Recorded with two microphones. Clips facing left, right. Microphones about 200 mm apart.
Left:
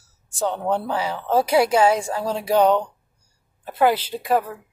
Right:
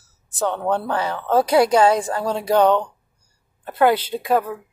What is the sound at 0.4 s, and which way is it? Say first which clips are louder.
A woman's voice: right 1 dB; 10° left (ahead or behind).